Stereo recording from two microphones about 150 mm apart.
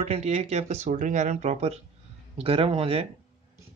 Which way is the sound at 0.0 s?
45° right (ahead or behind).